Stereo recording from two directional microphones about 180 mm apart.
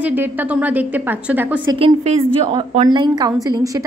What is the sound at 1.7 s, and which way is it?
A woman's voice, 35° right (ahead or behind).